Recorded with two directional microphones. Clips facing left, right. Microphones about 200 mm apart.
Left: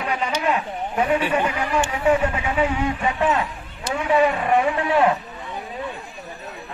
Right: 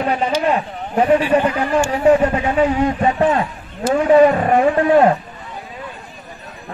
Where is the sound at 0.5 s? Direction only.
35° right (ahead or behind).